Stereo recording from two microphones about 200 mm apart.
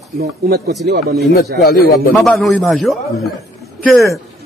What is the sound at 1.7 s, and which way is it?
Speech, 50° left (ahead or behind).